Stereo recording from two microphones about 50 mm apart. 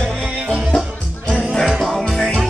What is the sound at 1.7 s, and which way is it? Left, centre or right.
Music, centre.